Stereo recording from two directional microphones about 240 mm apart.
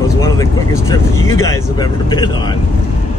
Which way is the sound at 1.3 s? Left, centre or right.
Centre.